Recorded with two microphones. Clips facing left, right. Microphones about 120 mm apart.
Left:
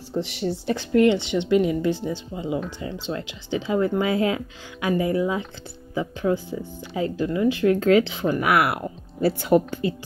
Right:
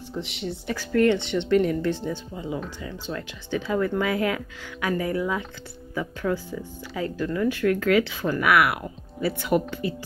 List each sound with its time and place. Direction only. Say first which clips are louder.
0.2 s speech: left 6 dB; 35° left (ahead or behind)